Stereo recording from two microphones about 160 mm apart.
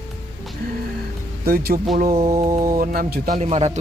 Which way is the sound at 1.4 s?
75° right (ahead or behind).